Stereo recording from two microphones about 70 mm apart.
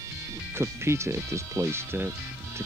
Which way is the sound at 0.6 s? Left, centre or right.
Right.